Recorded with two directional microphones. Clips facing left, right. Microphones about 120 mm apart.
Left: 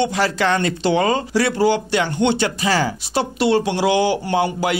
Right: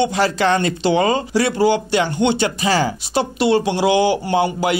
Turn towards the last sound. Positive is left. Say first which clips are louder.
# right 2 dB
turn(degrees=-20)  # may be behind; listen again after turning